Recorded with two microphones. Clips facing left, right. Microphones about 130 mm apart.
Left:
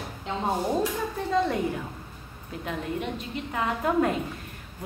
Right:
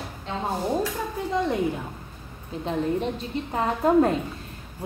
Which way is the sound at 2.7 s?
35° right (ahead or behind).